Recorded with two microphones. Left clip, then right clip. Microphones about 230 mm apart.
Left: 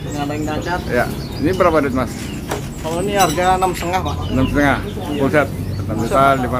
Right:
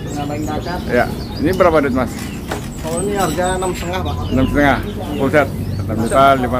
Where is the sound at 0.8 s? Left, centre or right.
Centre.